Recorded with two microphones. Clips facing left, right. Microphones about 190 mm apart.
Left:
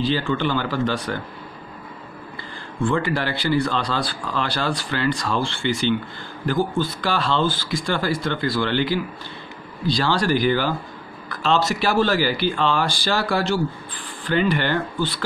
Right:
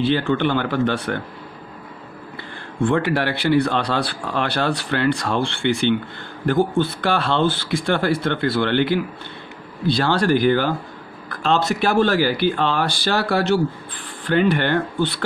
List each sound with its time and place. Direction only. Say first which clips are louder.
0.0 s speech: right 3 dB; 60° right (ahead or behind)
2.3 s speech: right 4 dB; 65° right (ahead or behind)